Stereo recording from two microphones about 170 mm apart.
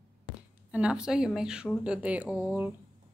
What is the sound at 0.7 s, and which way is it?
Speech, 5° right (ahead or behind).